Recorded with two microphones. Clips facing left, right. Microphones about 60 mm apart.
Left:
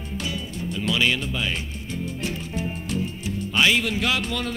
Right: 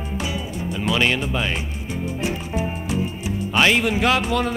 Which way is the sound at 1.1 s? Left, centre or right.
Right.